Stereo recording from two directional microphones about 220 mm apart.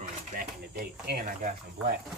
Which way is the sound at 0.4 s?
45° right (ahead or behind).